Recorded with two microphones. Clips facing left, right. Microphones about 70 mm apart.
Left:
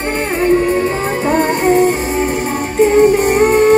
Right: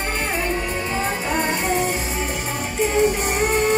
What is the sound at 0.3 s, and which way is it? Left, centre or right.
Music, left.